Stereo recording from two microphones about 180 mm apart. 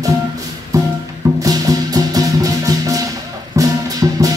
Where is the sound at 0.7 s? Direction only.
20° right (ahead or behind).